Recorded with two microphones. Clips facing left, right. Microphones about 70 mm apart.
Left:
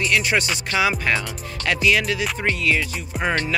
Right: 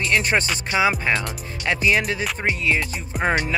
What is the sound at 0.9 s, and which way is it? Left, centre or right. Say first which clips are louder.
Music: even; centre.